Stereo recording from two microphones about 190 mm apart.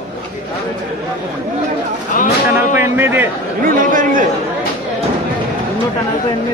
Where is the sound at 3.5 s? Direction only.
45° right (ahead or behind).